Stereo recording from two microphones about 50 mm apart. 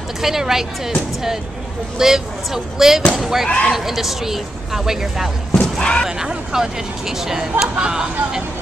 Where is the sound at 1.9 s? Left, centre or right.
Centre.